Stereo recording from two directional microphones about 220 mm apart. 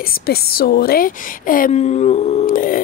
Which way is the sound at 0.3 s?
45° left (ahead or behind).